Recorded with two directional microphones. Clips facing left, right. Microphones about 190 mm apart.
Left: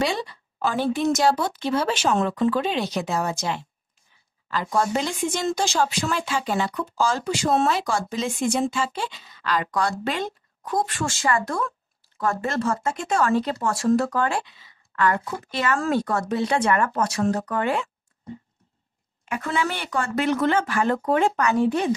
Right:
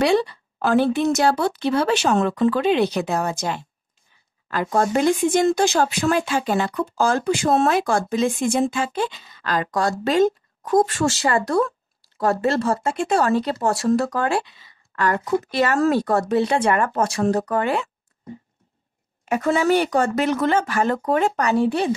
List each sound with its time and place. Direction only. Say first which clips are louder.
0.0 s speech: right 7 dB; 65° right (ahead or behind); by 14.2 s 40° right (ahead or behind)
15.2 s speech: right 6 dB; 40° right (ahead or behind)
19.2 s speech: right 7 dB; 40° right (ahead or behind)